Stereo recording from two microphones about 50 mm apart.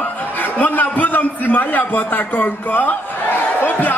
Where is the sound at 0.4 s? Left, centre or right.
Left.